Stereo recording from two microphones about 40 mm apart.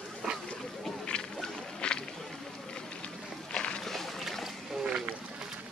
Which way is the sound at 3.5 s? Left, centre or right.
Left.